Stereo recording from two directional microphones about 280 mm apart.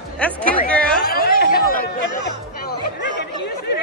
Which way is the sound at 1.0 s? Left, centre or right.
Left.